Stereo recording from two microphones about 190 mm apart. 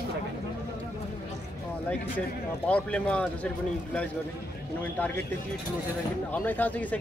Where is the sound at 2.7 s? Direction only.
5° left (ahead or behind).